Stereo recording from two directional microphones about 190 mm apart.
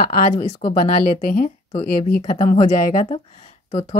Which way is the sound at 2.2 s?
35° left (ahead or behind).